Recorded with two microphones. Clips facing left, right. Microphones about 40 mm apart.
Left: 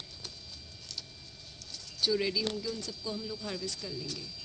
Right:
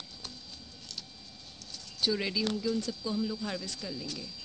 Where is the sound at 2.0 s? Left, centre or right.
Centre.